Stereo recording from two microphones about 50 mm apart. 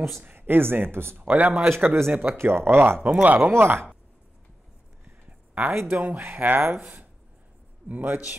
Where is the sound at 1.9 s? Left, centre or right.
Right.